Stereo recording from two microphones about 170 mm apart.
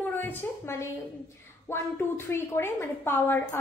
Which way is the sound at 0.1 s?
10° left (ahead or behind).